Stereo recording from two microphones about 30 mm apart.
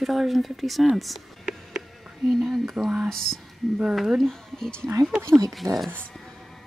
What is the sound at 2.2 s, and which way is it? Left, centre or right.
Speech, centre.